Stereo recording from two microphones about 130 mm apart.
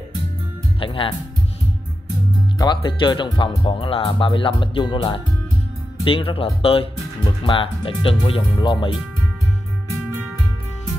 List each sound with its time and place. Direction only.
0.7 s speech: 45° left (ahead or behind)
2.6 s speech: 35° left (ahead or behind)